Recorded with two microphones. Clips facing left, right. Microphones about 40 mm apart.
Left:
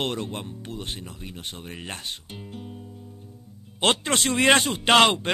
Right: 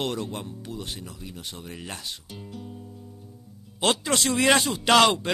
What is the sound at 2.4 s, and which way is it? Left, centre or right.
Guitar, left.